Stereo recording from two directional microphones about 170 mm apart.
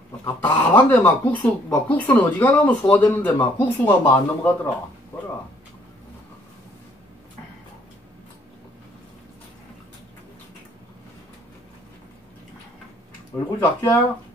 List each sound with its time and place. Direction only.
0.2 s speech: 10° left (ahead or behind)
13.6 s speech: 15° left (ahead or behind)